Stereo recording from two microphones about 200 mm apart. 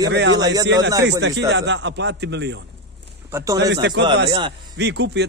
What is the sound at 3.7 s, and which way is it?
A man's voice, 60° right (ahead or behind).